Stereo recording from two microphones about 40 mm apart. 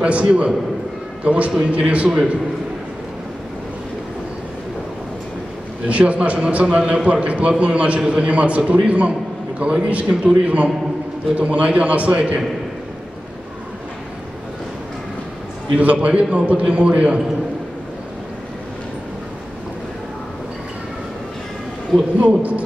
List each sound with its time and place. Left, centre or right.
0.0 s a man's voice: right
2.0 s a man's voice: right
5.9 s a man's voice: right
15.8 s a man's voice: right
22.3 s a man's voice: right